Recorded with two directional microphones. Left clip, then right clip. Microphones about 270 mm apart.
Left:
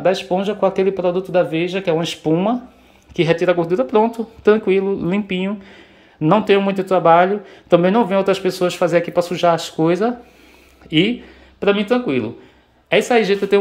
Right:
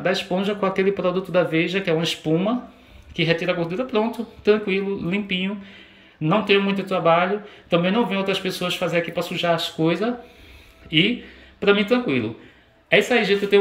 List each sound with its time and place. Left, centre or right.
0.0 s speech: centre